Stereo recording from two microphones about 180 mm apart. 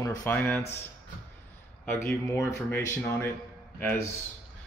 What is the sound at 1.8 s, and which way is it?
Speech, 15° left (ahead or behind).